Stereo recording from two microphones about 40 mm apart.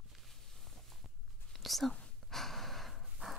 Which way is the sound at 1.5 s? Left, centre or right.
Centre.